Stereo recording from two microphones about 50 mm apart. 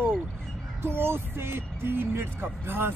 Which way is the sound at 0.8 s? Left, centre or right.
Right.